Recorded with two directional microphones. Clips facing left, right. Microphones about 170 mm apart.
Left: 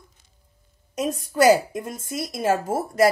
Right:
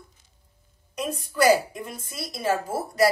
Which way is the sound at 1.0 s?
45° left (ahead or behind).